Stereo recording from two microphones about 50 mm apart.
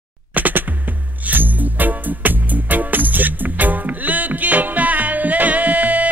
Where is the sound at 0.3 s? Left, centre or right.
Right.